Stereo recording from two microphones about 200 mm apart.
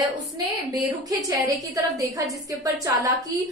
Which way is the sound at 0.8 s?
15° right (ahead or behind).